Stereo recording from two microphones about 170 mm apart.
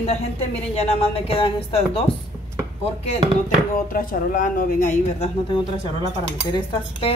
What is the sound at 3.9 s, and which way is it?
A woman's voice, 50° left (ahead or behind).